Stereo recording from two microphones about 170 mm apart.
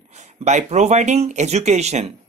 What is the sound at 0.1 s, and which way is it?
Speech, 45° right (ahead or behind).